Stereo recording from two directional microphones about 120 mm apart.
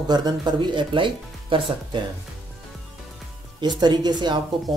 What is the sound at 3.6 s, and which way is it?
Speech, 35° right (ahead or behind).